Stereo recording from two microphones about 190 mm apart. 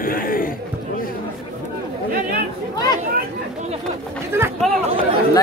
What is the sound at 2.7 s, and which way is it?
Chatter, 20° left (ahead or behind).